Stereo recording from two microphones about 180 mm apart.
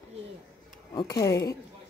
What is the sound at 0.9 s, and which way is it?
Speech, 20° left (ahead or behind).